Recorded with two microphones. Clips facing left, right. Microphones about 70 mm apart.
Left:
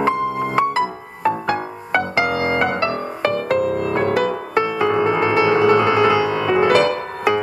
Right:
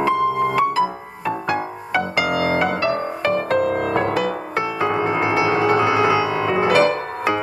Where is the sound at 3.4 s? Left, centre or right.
Right.